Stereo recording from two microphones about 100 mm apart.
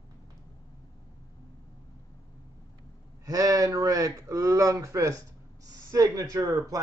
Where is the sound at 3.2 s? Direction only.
35° right (ahead or behind).